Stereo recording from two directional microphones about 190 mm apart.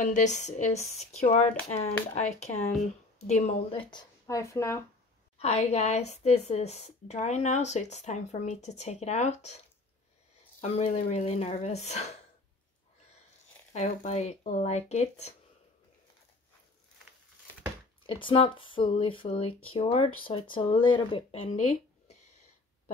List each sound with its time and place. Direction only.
0.0 s a woman's voice: 40° left (ahead or behind)
3.9 s speech: 20° left (ahead or behind)
5.4 s a woman's voice: 35° left (ahead or behind)
10.6 s a woman's voice: 35° left (ahead or behind)
13.7 s a woman's voice: 35° left (ahead or behind)
18.0 s speech: 30° left (ahead or behind)